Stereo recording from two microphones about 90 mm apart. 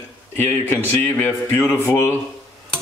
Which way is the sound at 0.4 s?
25° left (ahead or behind).